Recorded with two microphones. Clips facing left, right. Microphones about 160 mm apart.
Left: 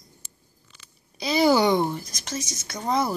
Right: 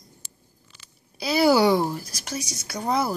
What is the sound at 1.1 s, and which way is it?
Speech, 5° right (ahead or behind).